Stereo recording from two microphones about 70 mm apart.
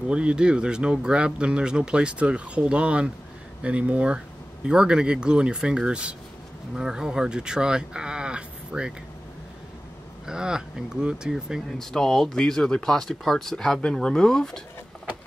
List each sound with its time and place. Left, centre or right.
0.1 s speech: centre
10.2 s speech: centre
11.8 s speech: centre